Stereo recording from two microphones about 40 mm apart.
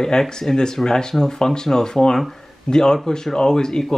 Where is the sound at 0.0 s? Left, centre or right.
Centre.